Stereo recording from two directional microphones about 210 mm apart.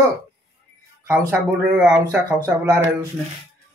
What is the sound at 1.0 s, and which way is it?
Speech, 15° right (ahead or behind).